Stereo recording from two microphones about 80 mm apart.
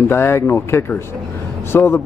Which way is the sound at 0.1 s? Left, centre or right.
Left.